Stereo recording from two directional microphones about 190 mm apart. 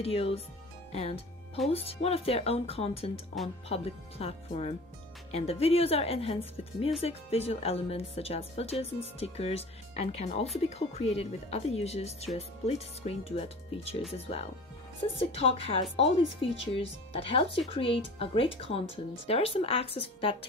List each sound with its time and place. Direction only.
0.0 s a woman's voice: 30° left (ahead or behind)